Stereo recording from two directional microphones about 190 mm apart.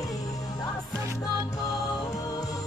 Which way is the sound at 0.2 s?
20° left (ahead or behind).